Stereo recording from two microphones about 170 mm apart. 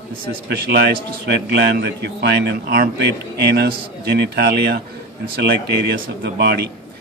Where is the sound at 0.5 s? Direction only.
70° right (ahead or behind).